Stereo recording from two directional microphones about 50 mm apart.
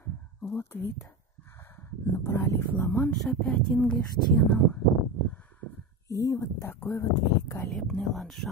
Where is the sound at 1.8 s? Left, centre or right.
Left.